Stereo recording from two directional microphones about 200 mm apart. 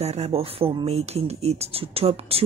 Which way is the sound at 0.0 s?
30° right (ahead or behind).